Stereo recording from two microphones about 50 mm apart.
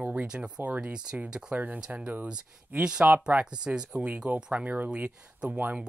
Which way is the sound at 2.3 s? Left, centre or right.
Centre.